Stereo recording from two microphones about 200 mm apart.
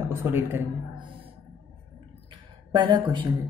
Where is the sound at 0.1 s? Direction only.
10° right (ahead or behind).